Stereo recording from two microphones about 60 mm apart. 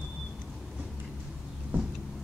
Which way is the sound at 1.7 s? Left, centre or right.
Right.